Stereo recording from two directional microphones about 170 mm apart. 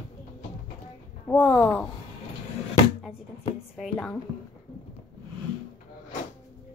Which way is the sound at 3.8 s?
5° left (ahead or behind).